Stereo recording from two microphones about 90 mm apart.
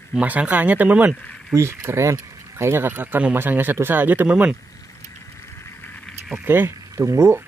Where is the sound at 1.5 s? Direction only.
30° right (ahead or behind).